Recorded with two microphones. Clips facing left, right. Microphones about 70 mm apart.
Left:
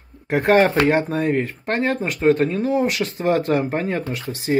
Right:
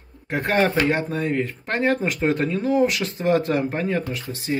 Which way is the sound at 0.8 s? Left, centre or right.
Left.